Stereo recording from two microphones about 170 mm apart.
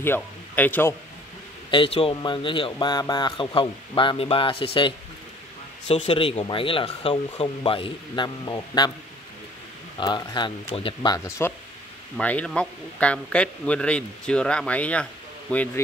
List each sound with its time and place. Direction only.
0.0 s speech: 10° left (ahead or behind)
1.7 s speech: 30° left (ahead or behind)
5.9 s speech: 35° left (ahead or behind)
9.9 s a man's voice: 25° left (ahead or behind); by 15.8 s 10° left (ahead or behind)